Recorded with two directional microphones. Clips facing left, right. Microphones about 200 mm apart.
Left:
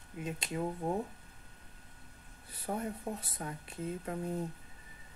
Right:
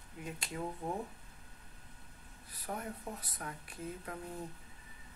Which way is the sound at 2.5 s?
25° left (ahead or behind).